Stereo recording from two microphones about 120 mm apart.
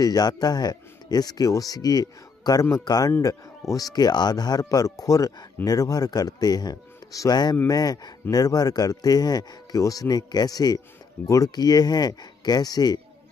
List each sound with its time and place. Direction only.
0.0 s speech: 35° left (ahead or behind)